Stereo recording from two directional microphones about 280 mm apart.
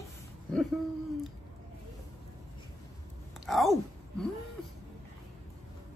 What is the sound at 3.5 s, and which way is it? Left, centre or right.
Speech, centre.